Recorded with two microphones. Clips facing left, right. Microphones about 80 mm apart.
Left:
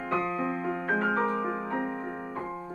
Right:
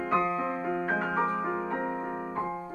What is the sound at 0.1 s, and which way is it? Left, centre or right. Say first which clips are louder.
Music: right 1 dB; centre.